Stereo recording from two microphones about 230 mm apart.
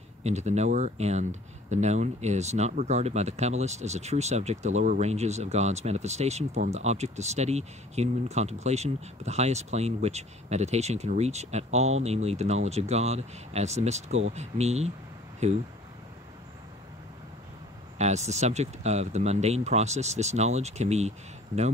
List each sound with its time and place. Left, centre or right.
0.2 s speech: right
17.9 s speech: right